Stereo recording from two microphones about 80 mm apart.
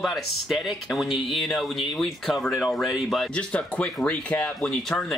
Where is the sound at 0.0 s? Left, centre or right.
Centre.